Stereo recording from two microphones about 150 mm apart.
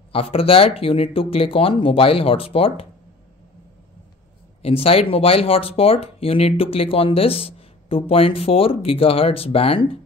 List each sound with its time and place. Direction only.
0.1 s speech: 40° left (ahead or behind)
4.6 s speech: 40° left (ahead or behind)